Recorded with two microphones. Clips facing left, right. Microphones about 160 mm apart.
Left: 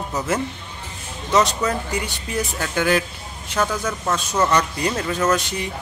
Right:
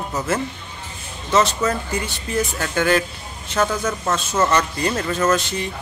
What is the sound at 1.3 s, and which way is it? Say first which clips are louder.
Speech: right 1 dB; 15° left (ahead or behind).